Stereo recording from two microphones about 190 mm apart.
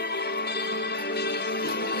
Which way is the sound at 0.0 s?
60° left (ahead or behind).